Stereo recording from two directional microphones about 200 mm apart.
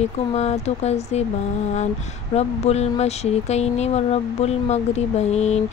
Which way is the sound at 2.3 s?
35° left (ahead or behind).